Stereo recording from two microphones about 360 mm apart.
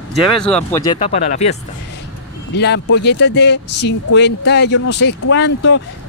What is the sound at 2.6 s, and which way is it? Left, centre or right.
Speech, left.